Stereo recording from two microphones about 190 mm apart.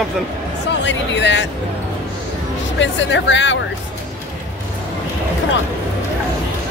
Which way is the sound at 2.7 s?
75° left (ahead or behind).